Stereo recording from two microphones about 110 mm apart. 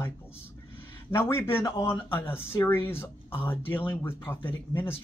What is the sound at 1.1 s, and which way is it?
Speech, 20° left (ahead or behind).